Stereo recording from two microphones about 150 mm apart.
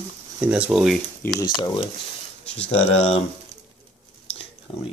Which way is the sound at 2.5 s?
45° left (ahead or behind).